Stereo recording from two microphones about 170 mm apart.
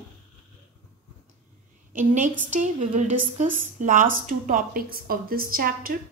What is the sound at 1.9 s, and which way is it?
A woman's voice, 45° right (ahead or behind).